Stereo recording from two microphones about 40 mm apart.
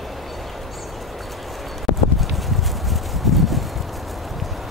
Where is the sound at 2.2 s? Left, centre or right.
Centre.